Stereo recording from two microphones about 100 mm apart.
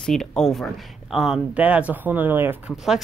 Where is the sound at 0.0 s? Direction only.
5° left (ahead or behind); by 2.5 s 20° right (ahead or behind).